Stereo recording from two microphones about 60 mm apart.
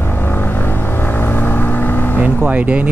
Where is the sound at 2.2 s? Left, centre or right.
Right.